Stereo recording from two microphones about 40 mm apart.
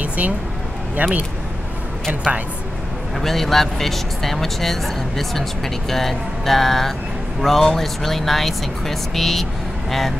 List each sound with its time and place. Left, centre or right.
1.0 s speech: right
3.2 s speech: centre